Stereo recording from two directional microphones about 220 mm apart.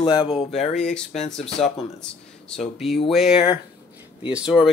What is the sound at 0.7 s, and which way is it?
Speech, 5° left (ahead or behind).